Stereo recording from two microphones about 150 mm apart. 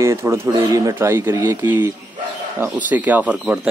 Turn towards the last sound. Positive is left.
turn(degrees=-10)  # may be behind; listen again after turning